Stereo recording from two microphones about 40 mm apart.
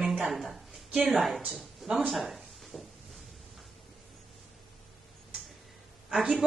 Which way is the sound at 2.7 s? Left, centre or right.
Right.